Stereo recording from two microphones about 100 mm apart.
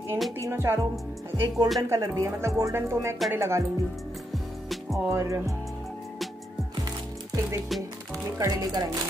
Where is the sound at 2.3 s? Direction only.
30° right (ahead or behind).